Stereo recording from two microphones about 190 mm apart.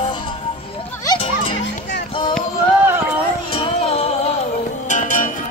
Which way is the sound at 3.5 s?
30° left (ahead or behind).